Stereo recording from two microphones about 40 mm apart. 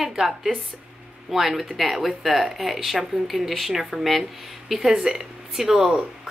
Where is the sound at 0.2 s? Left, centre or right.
Centre.